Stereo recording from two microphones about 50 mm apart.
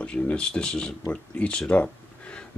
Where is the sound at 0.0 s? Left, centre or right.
Left.